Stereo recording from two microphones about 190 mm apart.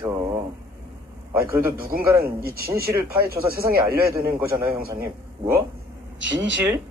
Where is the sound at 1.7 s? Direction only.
50° right (ahead or behind).